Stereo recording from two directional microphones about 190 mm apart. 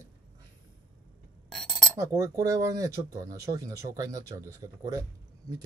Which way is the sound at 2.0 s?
15° right (ahead or behind).